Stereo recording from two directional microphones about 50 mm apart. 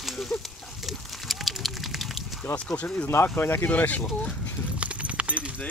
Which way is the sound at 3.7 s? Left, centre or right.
Left.